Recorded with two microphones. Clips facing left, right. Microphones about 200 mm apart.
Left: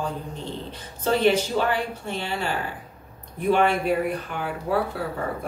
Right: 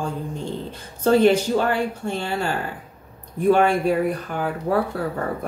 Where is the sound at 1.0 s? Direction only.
45° right (ahead or behind).